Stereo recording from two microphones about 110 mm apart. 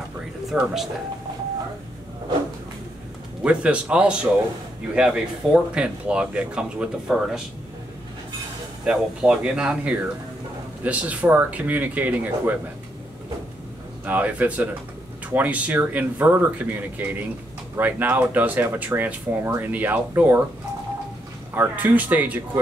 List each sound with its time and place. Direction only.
0.5 s speech: centre (ahead or behind)
3.4 s speech: 10° right (ahead or behind)
8.8 s speech: 10° right (ahead or behind)
14.0 s speech: 15° right (ahead or behind)
21.5 s speech: 15° right (ahead or behind)